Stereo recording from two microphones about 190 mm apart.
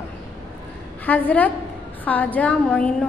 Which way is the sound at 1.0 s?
10° left (ahead or behind).